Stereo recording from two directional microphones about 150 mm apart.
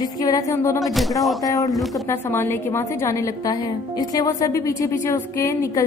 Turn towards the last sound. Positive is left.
turn(degrees=20)  # may be behind; listen again after turning